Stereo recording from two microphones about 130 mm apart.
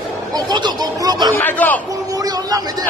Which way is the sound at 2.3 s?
30° right (ahead or behind).